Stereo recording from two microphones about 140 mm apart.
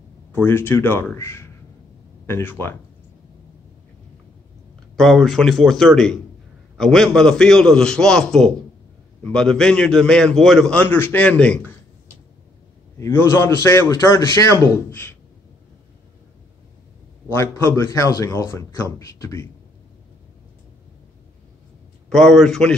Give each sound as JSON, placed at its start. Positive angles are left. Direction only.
{"t": 0.3, "sound": "a man's voice", "side_deg": 15}
{"t": 4.9, "sound": "a man's voice", "side_deg": 0}
{"t": 13.0, "sound": "a man's voice", "side_deg": 20}
{"t": 17.3, "sound": "a man's voice", "side_deg": 20}
{"t": 22.1, "sound": "a man's voice", "side_deg": 5}